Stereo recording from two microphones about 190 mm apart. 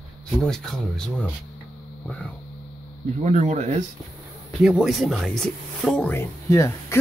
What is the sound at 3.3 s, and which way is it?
Speech, 35° right (ahead or behind).